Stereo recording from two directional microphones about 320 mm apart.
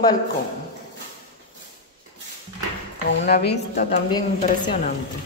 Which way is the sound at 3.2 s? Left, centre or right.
Left.